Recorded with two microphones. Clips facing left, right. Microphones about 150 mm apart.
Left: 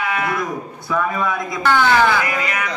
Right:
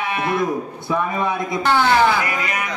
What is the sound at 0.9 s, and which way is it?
Speech, 25° right (ahead or behind).